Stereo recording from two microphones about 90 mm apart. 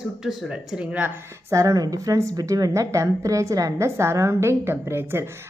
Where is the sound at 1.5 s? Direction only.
40° right (ahead or behind).